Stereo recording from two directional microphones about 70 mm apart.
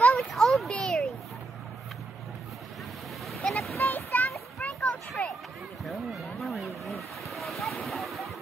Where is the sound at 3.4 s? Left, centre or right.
Centre.